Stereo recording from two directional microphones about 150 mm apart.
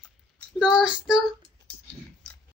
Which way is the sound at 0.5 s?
5° right (ahead or behind).